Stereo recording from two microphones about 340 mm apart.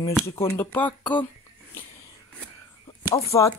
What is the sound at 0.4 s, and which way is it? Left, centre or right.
Speech, centre.